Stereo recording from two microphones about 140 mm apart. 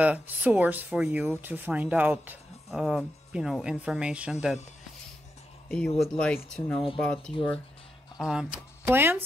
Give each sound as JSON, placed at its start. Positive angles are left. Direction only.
{"t": 0.0, "sound": "speech", "side_deg": -10}
{"t": 2.7, "sound": "speech", "side_deg": 0}
{"t": 5.7, "sound": "speech", "side_deg": 5}
{"t": 8.8, "sound": "speech", "side_deg": -15}